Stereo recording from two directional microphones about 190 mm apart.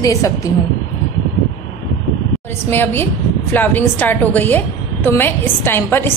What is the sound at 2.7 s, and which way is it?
A woman's voice, 10° left (ahead or behind).